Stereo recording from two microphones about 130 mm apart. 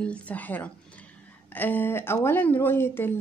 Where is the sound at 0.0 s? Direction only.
10° left (ahead or behind).